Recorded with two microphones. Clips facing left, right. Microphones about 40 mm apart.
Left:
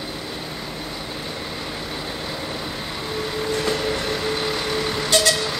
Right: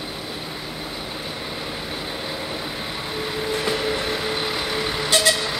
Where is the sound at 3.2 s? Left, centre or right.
Centre.